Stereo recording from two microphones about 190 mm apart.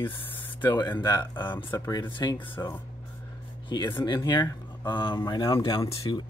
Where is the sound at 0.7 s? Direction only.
25° left (ahead or behind).